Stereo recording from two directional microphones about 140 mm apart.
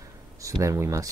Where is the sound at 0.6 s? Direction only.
20° right (ahead or behind).